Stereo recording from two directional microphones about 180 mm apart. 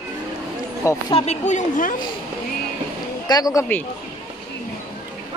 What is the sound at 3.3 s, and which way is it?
Speech, 20° left (ahead or behind).